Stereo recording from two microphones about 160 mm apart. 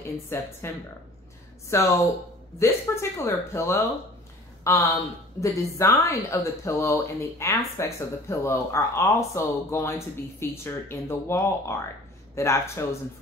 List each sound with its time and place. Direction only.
0.3 s speech: 15° left (ahead or behind)
1.7 s speech: 20° left (ahead or behind)